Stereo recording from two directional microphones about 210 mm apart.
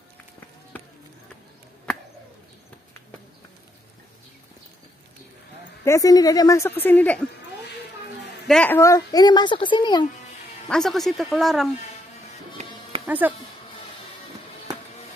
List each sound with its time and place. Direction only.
0.7 s a sound: 10° left (ahead or behind)
5.9 s a woman's voice: 15° left (ahead or behind)
8.5 s speech: 5° left (ahead or behind)
10.7 s speech: centre (ahead or behind)
13.0 s speech: 10° right (ahead or behind)